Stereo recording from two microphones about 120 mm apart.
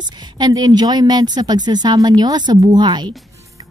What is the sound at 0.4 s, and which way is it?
A woman's voice, 35° right (ahead or behind).